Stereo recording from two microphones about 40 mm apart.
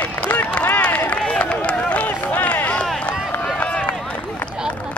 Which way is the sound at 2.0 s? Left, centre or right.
Left.